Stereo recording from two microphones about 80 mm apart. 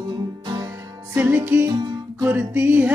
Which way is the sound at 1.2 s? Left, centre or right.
Right.